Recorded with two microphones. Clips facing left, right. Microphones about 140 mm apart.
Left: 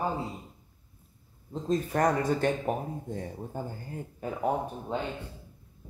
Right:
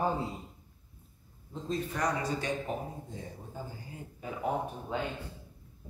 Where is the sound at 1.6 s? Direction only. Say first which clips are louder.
Left 6 dB; 45° left (ahead or behind).